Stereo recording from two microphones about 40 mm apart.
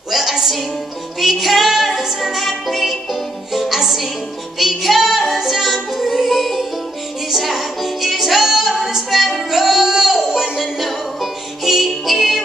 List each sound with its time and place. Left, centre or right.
0.1 s music: centre
10.3 s music: centre
10.6 s music: centre